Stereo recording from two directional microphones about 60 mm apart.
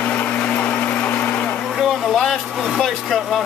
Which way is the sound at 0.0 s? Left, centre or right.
Left.